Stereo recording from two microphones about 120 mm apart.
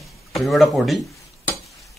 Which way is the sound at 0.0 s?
Centre (ahead or behind).